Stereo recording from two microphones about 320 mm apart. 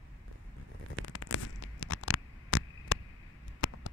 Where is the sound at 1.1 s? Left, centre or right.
Left.